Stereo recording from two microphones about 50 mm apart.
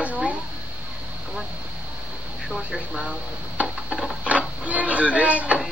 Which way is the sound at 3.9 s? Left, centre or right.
Centre.